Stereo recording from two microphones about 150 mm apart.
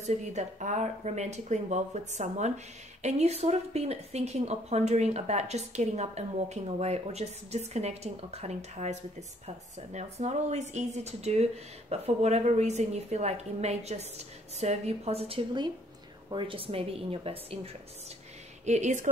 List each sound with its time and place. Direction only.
0.0 s speech: 50° right (ahead or behind)
9.9 s a woman's voice: 50° right (ahead or behind)
18.7 s speech: 50° right (ahead or behind)